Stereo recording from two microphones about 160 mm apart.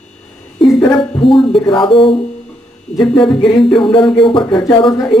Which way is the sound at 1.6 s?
30° left (ahead or behind).